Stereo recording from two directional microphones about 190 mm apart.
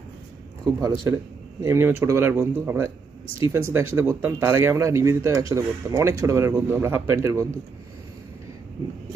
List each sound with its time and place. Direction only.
1.1 s speech: 15° right (ahead or behind)